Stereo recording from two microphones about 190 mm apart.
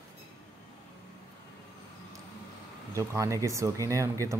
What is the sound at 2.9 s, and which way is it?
Speech, 15° right (ahead or behind).